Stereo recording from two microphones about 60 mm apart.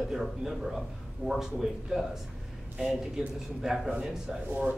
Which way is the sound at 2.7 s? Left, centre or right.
Centre.